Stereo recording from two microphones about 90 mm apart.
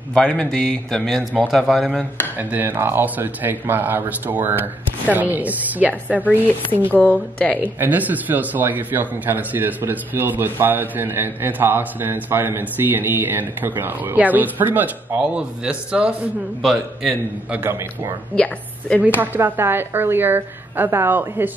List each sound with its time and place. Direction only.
0.1 s a man's voice: 5° left (ahead or behind)
2.3 s speech: 20° right (ahead or behind)
6.8 s a man's voice: 15° left (ahead or behind)
7.6 s speech: 20° right (ahead or behind)
18.3 s a man's voice: 10° left (ahead or behind)
19.3 s speech: 25° right (ahead or behind)